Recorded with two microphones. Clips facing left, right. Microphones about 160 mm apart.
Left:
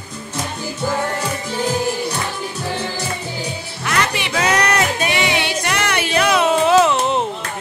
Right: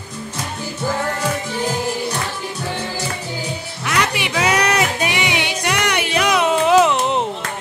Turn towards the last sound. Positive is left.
turn(degrees=-15)  # may be behind; listen again after turning